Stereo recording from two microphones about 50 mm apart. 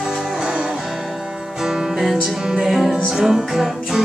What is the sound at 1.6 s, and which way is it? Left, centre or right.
Music, centre.